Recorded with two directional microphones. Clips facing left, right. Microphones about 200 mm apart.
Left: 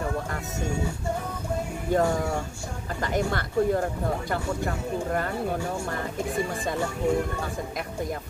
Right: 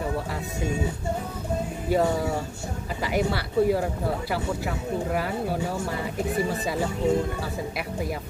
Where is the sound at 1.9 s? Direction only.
5° right (ahead or behind).